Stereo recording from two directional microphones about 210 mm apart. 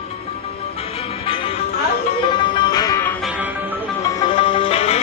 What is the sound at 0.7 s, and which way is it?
Music, 30° left (ahead or behind).